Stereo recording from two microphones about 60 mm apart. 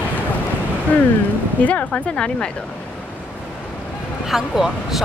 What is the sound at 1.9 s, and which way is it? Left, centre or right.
Speech, centre.